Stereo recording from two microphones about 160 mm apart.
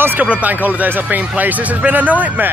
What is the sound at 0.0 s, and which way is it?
Speech, 10° right (ahead or behind).